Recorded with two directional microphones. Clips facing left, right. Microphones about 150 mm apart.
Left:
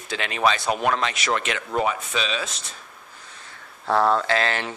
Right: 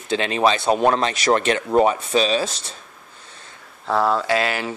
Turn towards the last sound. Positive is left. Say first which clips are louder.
# right 2 dB
turn(degrees=-10)  # may be behind; listen again after turning